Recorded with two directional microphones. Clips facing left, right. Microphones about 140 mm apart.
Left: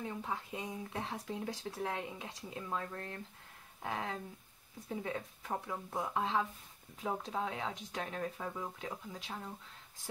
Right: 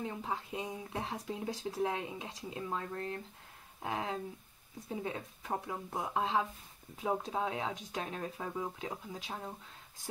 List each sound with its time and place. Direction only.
0.2 s speech: 20° right (ahead or behind)